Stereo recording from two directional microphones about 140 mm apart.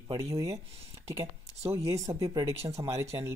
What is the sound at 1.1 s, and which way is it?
Speech, 45° right (ahead or behind).